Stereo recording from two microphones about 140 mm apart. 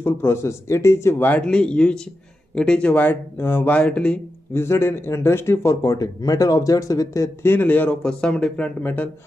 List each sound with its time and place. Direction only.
0.0 s speech: 15° left (ahead or behind)
4.6 s speech: 20° left (ahead or behind)